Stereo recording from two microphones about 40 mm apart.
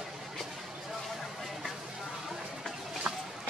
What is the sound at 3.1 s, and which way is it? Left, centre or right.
Music, centre.